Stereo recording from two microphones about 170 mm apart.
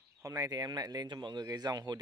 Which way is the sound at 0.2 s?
20° right (ahead or behind).